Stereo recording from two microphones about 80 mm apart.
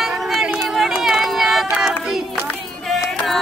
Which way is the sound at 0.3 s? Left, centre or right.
Centre.